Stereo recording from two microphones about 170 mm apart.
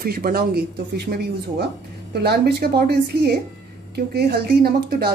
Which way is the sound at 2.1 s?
70° right (ahead or behind).